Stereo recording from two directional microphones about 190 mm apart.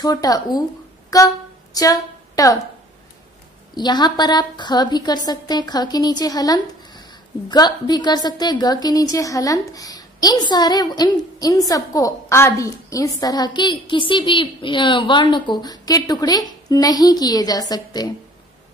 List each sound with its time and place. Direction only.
0.0 s a woman's voice: 20° left (ahead or behind)
1.1 s a sound: 20° left (ahead or behind)
3.7 s a woman's voice: 20° left (ahead or behind)